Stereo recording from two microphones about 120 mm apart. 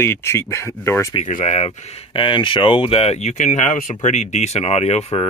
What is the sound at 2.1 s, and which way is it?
Speech, 45° left (ahead or behind).